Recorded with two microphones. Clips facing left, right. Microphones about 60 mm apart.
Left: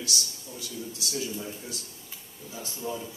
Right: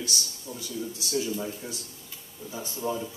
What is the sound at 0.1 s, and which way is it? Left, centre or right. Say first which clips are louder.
A man's voice: even; right.